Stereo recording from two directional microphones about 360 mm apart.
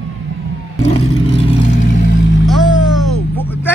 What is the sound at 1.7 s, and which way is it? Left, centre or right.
Vehicle, left.